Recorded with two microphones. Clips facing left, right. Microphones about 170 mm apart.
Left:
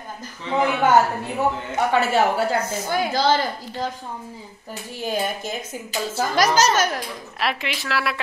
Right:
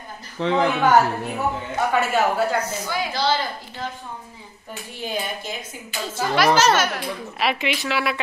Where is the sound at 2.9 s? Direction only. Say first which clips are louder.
Left 4 dB; 50° left (ahead or behind).